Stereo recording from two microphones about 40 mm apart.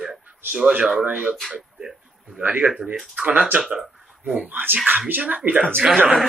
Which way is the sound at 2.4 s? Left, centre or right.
Right.